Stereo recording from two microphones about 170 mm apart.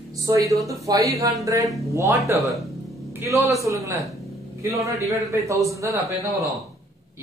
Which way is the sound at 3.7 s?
10° right (ahead or behind).